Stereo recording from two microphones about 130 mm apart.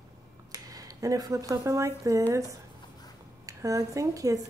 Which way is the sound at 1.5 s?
25° right (ahead or behind).